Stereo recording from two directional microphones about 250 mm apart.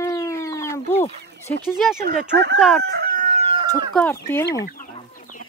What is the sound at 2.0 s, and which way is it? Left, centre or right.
Speech, right.